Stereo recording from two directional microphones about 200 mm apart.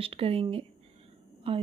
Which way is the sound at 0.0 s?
30° right (ahead or behind).